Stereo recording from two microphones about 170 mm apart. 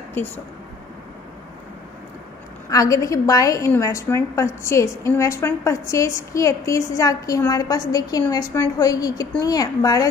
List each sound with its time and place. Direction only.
0.2 s speech: 10° left (ahead or behind)
2.7 s a woman's voice: 20° left (ahead or behind)